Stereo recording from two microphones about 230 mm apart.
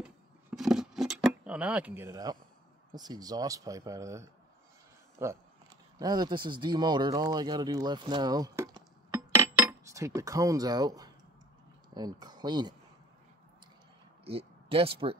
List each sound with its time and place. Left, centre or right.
0.0 s keys jangling: centre
2.9 s speech: centre
14.2 s speech: right